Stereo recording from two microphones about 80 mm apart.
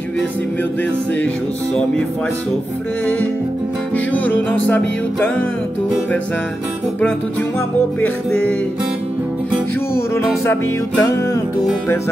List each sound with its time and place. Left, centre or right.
3.9 s music: centre
9.9 s music: left